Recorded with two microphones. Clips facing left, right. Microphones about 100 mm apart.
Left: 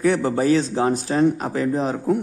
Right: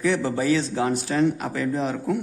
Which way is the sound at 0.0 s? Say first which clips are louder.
Left 4 dB; 45° left (ahead or behind).